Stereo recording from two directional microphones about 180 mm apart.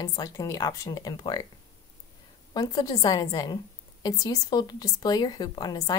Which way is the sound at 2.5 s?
20° left (ahead or behind).